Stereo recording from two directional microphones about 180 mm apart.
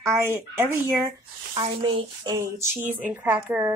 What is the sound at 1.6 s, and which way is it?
Speech, 30° right (ahead or behind).